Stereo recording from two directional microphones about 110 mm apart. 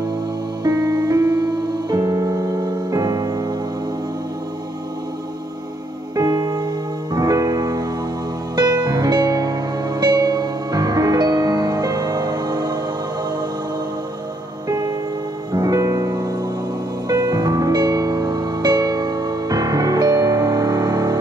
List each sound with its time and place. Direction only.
0.7 s music: 35° right (ahead or behind)
6.1 s music: 35° right (ahead or behind)
14.7 s music: 35° right (ahead or behind)